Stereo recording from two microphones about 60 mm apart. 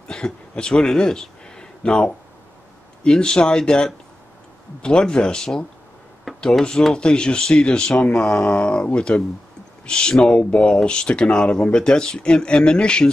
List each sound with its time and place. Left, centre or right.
0.1 s speech: centre
6.3 s a sound: centre
6.8 s speech: centre